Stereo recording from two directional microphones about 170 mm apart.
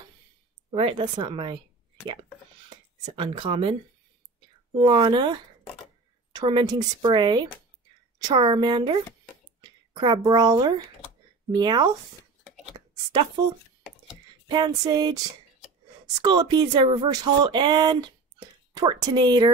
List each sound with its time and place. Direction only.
0.7 s speech: 30° right (ahead or behind)
3.2 s speech: 30° right (ahead or behind)
4.7 s speech: 25° right (ahead or behind)
14.5 s speech: 25° right (ahead or behind)
16.2 s speech: 25° right (ahead or behind)